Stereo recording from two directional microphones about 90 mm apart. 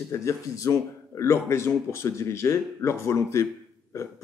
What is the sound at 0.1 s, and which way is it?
A man's voice, 35° left (ahead or behind).